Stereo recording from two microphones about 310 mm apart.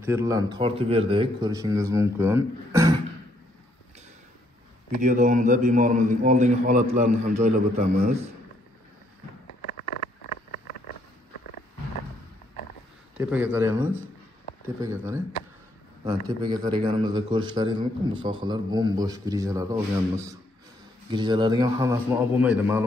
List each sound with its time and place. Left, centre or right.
0.0 s speech: centre
5.0 s a man's voice: right
13.2 s speech: centre